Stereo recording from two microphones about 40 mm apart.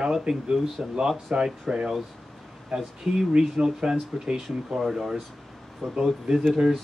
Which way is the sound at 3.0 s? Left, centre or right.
Centre.